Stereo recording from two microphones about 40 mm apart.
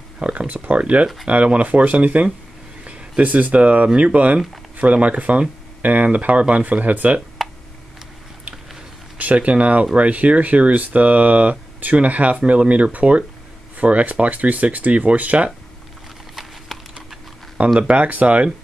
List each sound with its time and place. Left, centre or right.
0.2 s speech: right
7.4 s a sound: centre
9.2 s speech: right
16.7 s typing: centre
17.7 s speech: right